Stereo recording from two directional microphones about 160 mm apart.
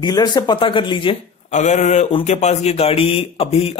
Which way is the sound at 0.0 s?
25° left (ahead or behind).